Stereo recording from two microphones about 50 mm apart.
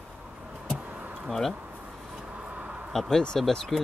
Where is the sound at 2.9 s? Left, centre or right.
Centre.